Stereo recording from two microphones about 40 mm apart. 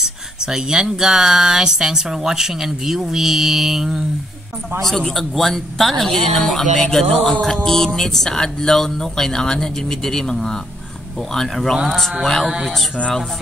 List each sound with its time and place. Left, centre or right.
0.0 s a sound: centre
1.0 s speech: centre
4.8 s a man's voice: centre